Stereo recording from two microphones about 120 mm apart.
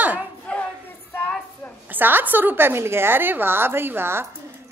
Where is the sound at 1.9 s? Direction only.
15° right (ahead or behind).